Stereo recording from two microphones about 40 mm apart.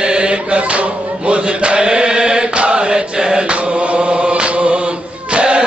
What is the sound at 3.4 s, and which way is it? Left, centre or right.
Chant, right.